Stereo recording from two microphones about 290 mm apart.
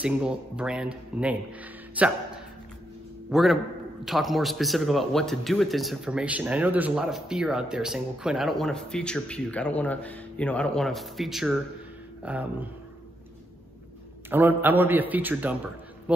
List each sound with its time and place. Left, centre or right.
0.0 s a man's voice: centre
14.3 s a man's voice: centre